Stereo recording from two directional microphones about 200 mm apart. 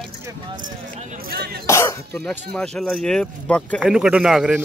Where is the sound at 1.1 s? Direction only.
50° right (ahead or behind).